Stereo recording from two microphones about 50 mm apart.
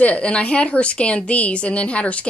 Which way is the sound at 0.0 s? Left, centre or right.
Left.